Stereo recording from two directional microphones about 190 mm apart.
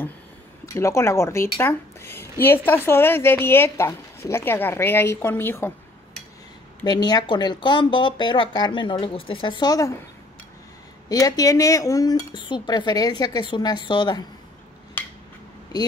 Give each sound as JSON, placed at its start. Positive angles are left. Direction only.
{"t": 0.7, "sound": "a woman's voice", "side_deg": 15}
{"t": 6.8, "sound": "speech", "side_deg": 20}
{"t": 11.1, "sound": "speech", "side_deg": 20}
{"t": 15.0, "sound": "a sound", "side_deg": 10}
{"t": 15.7, "sound": "speech", "side_deg": 20}